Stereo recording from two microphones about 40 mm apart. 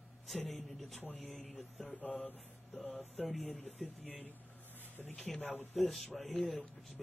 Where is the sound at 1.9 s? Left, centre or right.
Left.